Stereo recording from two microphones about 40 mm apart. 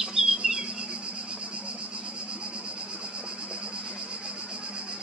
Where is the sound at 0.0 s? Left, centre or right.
Centre.